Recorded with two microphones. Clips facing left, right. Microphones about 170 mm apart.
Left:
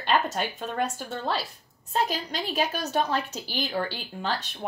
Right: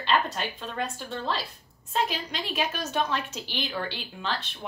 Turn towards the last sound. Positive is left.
turn(degrees=40)  # may be behind; listen again after turning